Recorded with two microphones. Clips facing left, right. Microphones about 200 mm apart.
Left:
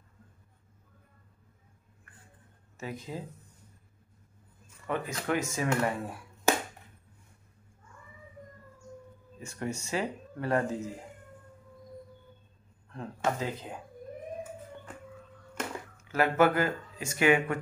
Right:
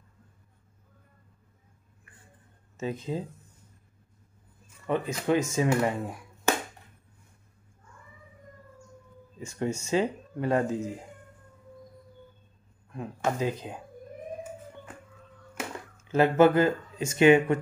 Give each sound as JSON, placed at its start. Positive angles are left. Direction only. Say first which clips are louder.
{"t": 2.8, "sound": "speech", "louder": "right 6 dB", "side_deg": -20}
{"t": 4.8, "sound": "speech", "louder": "right 5 dB", "side_deg": -20}
{"t": 9.4, "sound": "speech", "louder": "right 5 dB", "side_deg": -20}
{"t": 12.9, "sound": "speech", "louder": "right 2 dB", "side_deg": -15}
{"t": 16.0, "sound": "a sound", "louder": "right 5 dB", "side_deg": -25}
{"t": 16.3, "sound": "speech", "louder": "right 5 dB", "side_deg": -25}